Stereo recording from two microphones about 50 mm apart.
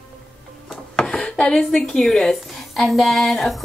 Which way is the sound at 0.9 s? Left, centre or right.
Centre.